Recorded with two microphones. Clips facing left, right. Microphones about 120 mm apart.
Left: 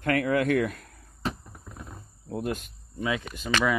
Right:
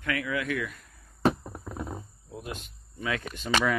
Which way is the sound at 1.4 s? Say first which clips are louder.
Right 8 dB; 55° right (ahead or behind).